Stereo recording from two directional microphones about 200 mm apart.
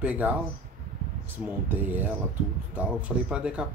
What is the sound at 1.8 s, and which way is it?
Speech, 10° right (ahead or behind).